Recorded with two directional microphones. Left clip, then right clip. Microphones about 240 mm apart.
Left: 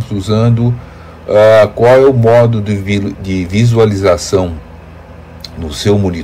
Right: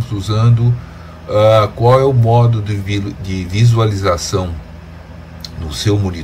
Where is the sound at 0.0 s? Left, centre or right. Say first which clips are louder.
Left 6 dB; centre.